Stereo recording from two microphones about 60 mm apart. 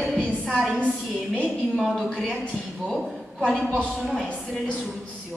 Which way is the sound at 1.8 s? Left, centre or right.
Centre.